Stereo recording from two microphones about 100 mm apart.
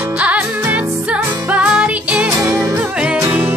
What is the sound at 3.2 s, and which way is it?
Music, 20° right (ahead or behind).